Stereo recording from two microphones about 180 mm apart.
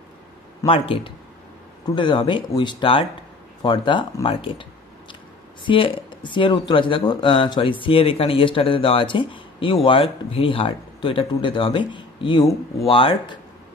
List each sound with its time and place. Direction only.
0.7 s speech: 30° left (ahead or behind)
5.7 s speech: 30° left (ahead or behind)